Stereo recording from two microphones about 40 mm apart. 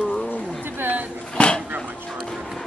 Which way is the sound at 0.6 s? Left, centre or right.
Right.